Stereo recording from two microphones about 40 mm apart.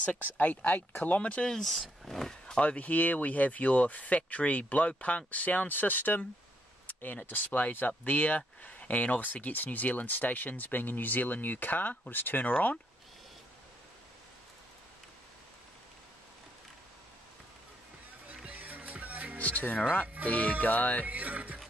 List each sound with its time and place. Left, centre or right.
0.7 s speech: left
1.2 s speech: left
1.5 s speech: centre
2.6 s speech: left
6.9 s a sound: left
7.2 s speech: left
18.3 s music: right
18.6 s music: right
19.3 s music: left
20.2 s speech: left
21.0 s speech: right